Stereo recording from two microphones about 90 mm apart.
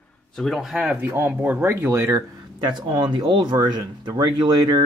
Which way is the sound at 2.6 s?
60° right (ahead or behind).